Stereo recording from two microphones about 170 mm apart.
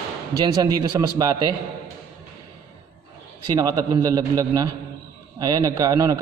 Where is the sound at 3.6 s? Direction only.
20° right (ahead or behind).